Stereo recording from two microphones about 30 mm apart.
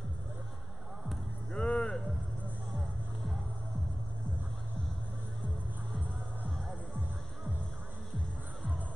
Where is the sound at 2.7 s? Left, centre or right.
Centre.